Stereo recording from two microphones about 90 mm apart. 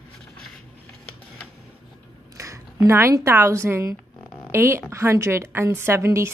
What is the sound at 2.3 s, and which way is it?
A woman's voice, 35° right (ahead or behind).